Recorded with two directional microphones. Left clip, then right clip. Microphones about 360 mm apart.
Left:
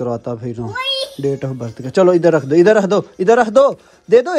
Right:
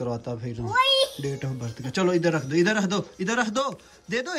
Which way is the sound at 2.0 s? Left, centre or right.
Centre.